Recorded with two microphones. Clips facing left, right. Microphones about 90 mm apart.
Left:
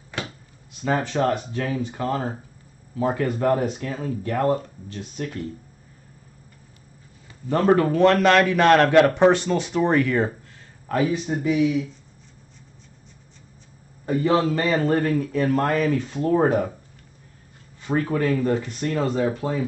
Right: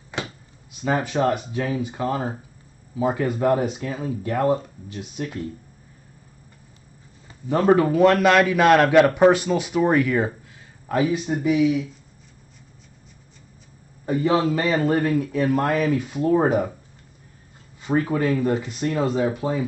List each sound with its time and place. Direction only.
0.1 s a sound: 20° right (ahead or behind)
0.7 s a man's voice: 10° right (ahead or behind)
7.4 s a man's voice: 10° right (ahead or behind)
14.0 s a man's voice: 10° right (ahead or behind)
17.7 s a man's voice: 10° right (ahead or behind)